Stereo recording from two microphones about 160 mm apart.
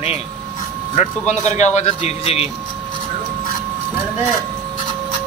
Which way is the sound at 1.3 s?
45° left (ahead or behind).